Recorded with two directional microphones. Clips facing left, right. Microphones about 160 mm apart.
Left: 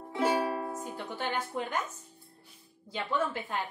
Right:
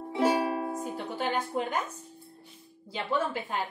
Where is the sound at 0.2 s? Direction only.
15° right (ahead or behind).